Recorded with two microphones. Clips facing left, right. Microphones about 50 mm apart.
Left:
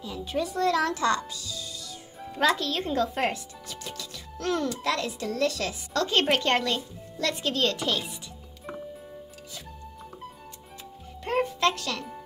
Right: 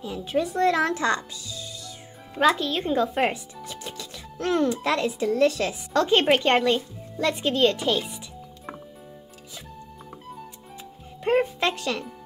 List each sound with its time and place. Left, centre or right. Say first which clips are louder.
0.0 s speech: right 4 dB; right
2.4 s speech: right 3 dB; centre
7.7 s a child's voice: right 4 dB; centre
11.2 s music: right 3 dB; centre